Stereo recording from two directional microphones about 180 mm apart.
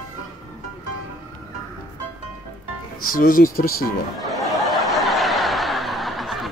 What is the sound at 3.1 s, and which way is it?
Speech, 50° left (ahead or behind).